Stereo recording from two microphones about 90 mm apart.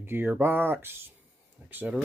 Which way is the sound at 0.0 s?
25° right (ahead or behind).